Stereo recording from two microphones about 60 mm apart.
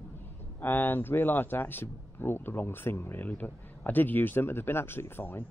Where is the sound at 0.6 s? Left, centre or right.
Left.